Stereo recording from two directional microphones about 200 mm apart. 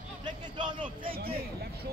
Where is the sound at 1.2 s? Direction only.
50° right (ahead or behind).